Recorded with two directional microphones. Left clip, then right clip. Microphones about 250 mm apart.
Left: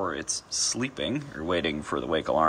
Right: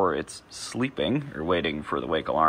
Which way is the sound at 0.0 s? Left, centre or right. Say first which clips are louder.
Right 5 dB; centre.